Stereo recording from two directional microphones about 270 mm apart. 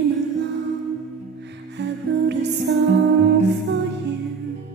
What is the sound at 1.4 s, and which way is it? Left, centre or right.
Music, right.